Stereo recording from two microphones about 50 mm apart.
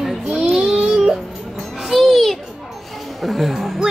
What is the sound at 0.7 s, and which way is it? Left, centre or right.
Music, centre.